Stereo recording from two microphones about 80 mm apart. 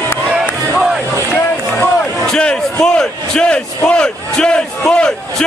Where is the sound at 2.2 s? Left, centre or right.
Centre.